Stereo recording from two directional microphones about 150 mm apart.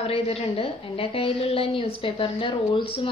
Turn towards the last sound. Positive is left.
turn(degrees=35)  # may be behind; listen again after turning